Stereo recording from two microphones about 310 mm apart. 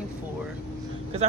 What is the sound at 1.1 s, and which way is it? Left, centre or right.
Speech, centre.